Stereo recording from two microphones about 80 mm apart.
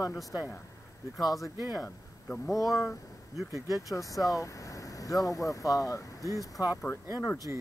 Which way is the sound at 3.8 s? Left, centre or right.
Left.